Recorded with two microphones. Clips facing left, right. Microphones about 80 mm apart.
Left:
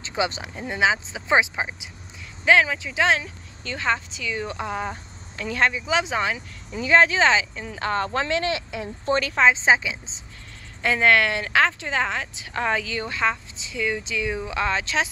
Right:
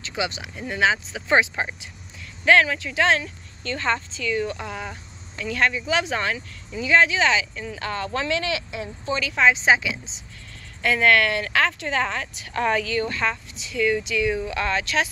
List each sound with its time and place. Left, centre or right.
0.0 s speech: left
0.7 s a woman's voice: centre
6.8 s speech: left
9.4 s speech: left